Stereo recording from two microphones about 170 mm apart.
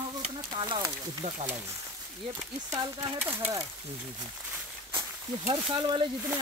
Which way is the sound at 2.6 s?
20° right (ahead or behind).